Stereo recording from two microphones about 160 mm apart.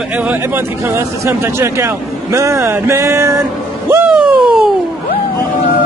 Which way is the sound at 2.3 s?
20° right (ahead or behind).